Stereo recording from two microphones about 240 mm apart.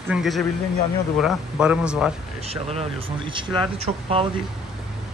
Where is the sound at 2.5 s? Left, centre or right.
Right.